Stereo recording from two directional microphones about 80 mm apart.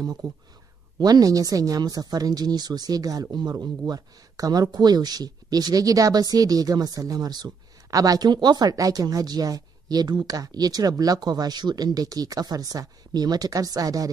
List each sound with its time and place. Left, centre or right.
0.0 s speech: right